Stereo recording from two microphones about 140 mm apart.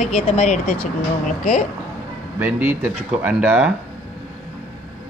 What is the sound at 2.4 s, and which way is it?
Speech, 15° right (ahead or behind).